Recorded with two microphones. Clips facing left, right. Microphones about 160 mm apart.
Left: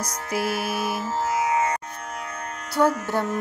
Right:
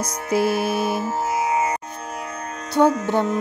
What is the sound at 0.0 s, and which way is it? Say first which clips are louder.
Music: right 6 dB; 25° right (ahead or behind).